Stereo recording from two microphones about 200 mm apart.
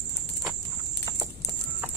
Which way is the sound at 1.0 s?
15° right (ahead or behind).